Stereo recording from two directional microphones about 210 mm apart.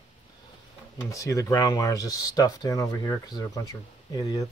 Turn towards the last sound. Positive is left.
turn(degrees=15)  # may be behind; listen again after turning